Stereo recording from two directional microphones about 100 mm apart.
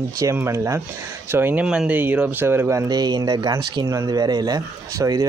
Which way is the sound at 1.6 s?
10° right (ahead or behind).